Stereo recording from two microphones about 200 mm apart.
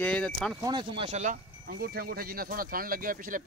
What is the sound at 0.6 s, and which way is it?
Speech, 20° right (ahead or behind).